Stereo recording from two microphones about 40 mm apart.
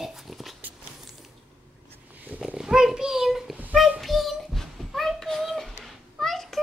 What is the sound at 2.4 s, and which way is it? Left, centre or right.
A child's voice, centre.